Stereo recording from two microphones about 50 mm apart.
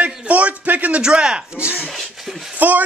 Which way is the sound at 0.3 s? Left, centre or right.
Right.